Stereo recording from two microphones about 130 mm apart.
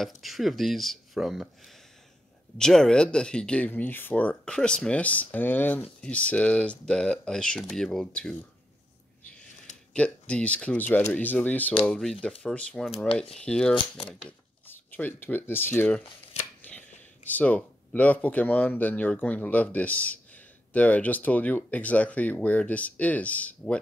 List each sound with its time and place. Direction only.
0.0 s speech: centre (ahead or behind)
9.9 s speech: 10° left (ahead or behind)
17.3 s speech: 10° left (ahead or behind)